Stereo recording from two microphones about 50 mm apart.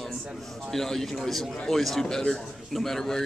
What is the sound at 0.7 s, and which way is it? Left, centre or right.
A man's voice, centre.